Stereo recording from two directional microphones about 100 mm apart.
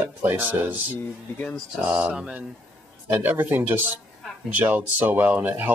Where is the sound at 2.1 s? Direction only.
10° right (ahead or behind).